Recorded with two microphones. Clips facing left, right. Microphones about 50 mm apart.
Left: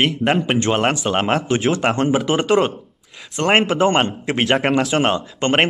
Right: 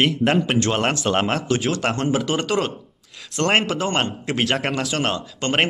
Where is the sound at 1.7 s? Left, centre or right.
Left.